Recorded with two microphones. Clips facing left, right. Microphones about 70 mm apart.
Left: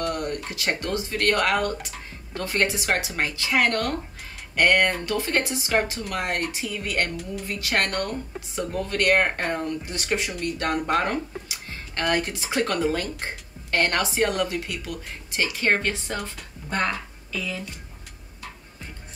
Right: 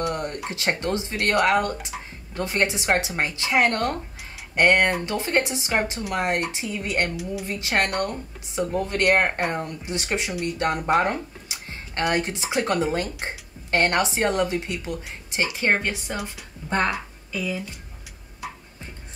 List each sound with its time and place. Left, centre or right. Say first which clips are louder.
0.1 s speech: even; right
16.6 s speech: right 3 dB; right
16.9 s speech: right 1 dB; centre